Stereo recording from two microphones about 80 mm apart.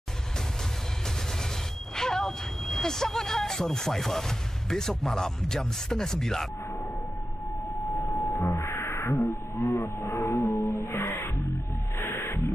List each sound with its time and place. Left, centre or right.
2.0 s speech: centre
8.0 s a sound: left
8.5 s music: left
10.2 s music: left
10.6 s music: left